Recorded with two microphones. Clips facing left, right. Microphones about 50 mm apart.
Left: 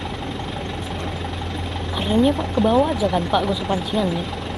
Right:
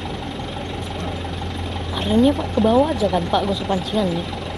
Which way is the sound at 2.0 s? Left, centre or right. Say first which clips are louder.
Right 2 dB; centre.